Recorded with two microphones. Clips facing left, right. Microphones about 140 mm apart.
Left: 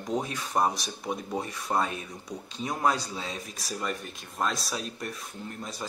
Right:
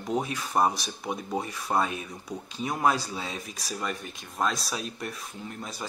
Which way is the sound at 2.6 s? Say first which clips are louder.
Right 2 dB; 10° right (ahead or behind).